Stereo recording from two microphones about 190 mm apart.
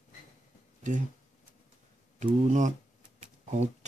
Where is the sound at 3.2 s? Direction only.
40° right (ahead or behind).